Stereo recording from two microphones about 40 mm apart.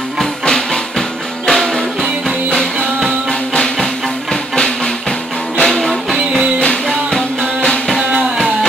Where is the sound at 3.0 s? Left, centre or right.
Centre.